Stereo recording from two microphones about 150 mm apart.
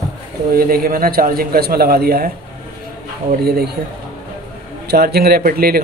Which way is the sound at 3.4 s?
90° right.